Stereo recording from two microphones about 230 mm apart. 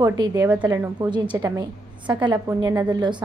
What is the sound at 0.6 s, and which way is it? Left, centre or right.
A woman's voice, centre.